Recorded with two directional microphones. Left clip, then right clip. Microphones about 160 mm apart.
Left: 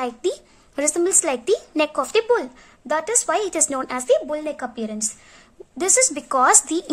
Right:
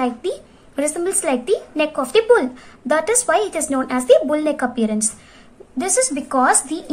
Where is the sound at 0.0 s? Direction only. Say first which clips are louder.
Right 2 dB; 35° left (ahead or behind).